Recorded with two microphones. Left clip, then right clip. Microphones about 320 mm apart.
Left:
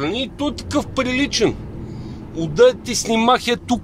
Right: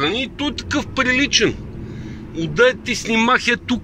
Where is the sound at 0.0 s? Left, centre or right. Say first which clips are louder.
Right 2 dB; centre.